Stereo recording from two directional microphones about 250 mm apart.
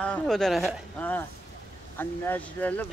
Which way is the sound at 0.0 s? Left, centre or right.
Centre.